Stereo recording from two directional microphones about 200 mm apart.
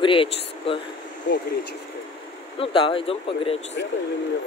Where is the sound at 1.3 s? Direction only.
60° left (ahead or behind).